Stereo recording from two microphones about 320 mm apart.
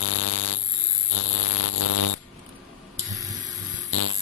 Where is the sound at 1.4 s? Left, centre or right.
Left.